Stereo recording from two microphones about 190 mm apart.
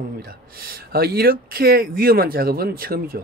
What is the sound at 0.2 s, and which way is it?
A man's voice, 50° right (ahead or behind).